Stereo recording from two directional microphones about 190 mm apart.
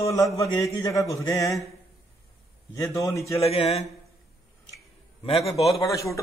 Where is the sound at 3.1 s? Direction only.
15° left (ahead or behind).